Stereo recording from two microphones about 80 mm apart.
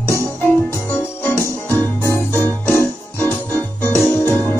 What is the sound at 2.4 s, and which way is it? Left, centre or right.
Keyboard, left.